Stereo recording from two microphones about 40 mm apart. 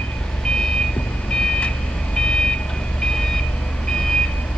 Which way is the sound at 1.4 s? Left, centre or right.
Left.